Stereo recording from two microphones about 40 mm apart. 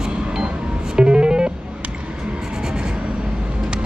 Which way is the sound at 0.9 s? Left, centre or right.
Right.